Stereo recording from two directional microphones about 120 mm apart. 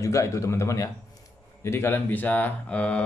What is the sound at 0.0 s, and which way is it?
Speech, 25° left (ahead or behind).